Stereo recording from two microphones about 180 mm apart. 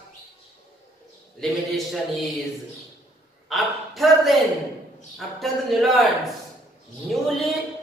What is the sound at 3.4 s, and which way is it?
Speech, centre (ahead or behind).